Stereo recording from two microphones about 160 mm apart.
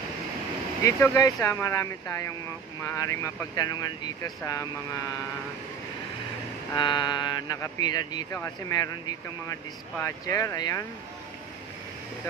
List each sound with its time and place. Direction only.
0.8 s speech: 20° left (ahead or behind)
6.7 s speech: 30° left (ahead or behind)